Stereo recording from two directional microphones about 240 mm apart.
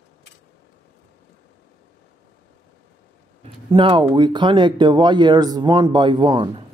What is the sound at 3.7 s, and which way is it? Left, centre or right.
Speech, right.